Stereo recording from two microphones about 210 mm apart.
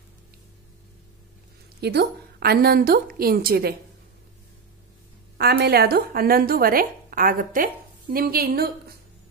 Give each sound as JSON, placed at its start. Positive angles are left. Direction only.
{"t": 1.8, "sound": "a woman's voice", "side_deg": -50}
{"t": 5.4, "sound": "a woman's voice", "side_deg": -50}